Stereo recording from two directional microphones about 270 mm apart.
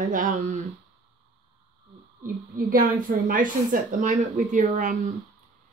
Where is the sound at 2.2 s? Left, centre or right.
Right.